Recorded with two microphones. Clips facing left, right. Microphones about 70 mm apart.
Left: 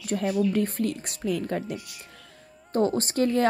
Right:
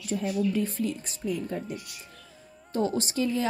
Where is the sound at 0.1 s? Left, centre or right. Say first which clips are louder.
Left 3 dB; left.